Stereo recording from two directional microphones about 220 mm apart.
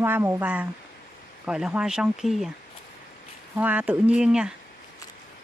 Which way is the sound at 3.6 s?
5° right (ahead or behind).